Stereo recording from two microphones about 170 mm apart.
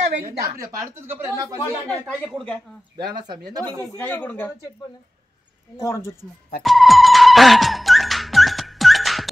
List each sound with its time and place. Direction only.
0.4 s speech: 20° right (ahead or behind)
2.2 s speech: centre (ahead or behind)
3.9 s speech: 10° left (ahead or behind)
5.8 s speech: 20° left (ahead or behind)
6.6 s music: centre (ahead or behind)